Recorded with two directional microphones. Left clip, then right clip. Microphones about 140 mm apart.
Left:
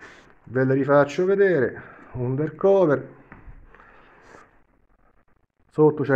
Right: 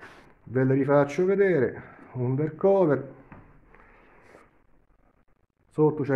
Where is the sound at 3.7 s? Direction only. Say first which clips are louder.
Left 8 dB; 10° right (ahead or behind).